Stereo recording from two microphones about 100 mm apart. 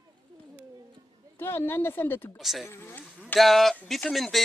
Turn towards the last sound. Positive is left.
turn(degrees=0)  # may be behind; listen again after turning